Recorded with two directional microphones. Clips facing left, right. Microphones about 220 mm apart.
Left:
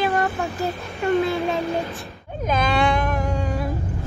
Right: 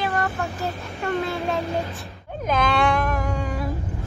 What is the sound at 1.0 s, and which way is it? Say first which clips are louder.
Speech: left 5 dB; centre (ahead or behind).